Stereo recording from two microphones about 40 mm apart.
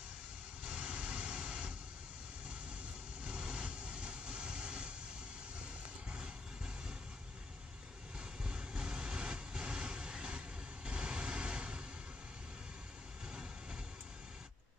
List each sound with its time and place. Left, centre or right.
0.7 s vehicle: right
3.3 s vehicle: right
6.0 s music: right
8.2 s vehicle: right
10.9 s a sound: right
13.3 s a sound: right